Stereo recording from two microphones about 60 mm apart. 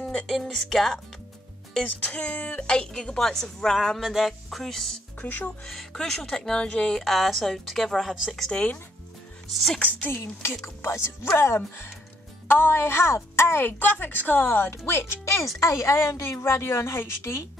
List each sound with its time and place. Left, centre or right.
0.1 s a woman's voice: centre
5.2 s speech: left
5.7 s speech: centre
9.5 s speech: centre
10.0 s a woman's voice: left
15.6 s a woman's voice: left